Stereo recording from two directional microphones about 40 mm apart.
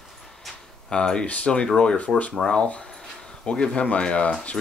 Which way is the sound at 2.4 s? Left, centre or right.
Left.